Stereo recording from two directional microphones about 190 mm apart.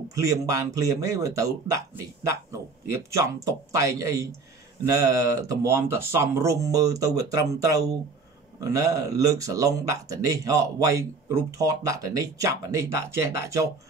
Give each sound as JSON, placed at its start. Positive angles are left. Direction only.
{"t": 0.1, "sound": "speech", "side_deg": -15}